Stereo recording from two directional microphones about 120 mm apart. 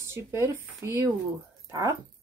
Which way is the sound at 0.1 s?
20° right (ahead or behind).